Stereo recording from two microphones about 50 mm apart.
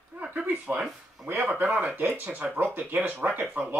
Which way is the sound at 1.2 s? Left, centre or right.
Right.